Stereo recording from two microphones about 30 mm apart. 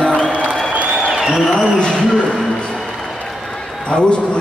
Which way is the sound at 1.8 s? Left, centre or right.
Left.